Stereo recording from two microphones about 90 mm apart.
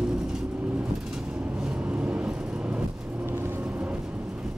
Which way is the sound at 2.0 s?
15° right (ahead or behind).